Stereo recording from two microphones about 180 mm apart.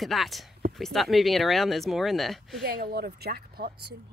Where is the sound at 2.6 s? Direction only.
60° right (ahead or behind).